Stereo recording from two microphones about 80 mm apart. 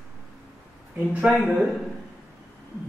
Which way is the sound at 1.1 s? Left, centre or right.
Centre.